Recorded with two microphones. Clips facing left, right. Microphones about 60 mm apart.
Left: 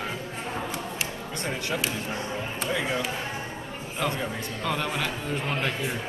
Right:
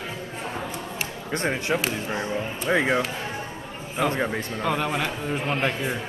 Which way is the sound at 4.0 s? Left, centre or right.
Centre.